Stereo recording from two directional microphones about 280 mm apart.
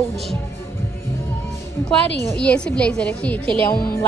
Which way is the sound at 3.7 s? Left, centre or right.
Left.